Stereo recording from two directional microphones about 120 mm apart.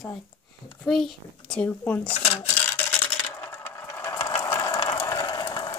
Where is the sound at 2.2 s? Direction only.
65° left (ahead or behind).